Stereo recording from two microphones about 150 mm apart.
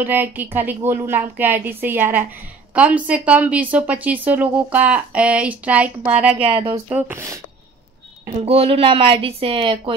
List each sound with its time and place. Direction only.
0.0 s a woman's voice: 10° right (ahead or behind)
6.5 s speech: 35° right (ahead or behind)
6.9 s a woman's voice: 10° right (ahead or behind)
8.4 s speech: 40° right (ahead or behind)